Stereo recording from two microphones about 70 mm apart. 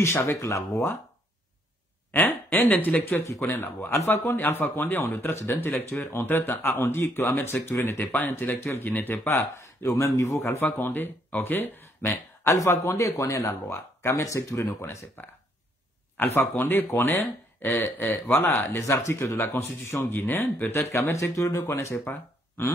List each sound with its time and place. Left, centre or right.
0.0 s speech: left
2.1 s speech: left
5.1 s speech: left
12.1 s speech: left
16.2 s speech: left
18.9 s speech: left
19.3 s speech: left
20.9 s speech: left
22.0 s a sound: left